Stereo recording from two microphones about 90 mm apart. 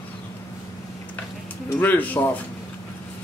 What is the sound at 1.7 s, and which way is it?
Speech, 20° left (ahead or behind).